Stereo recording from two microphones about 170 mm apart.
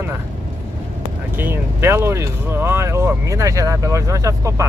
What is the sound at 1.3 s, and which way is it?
Speech, 15° right (ahead or behind).